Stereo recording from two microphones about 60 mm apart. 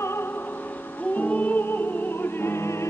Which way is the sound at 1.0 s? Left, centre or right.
Left.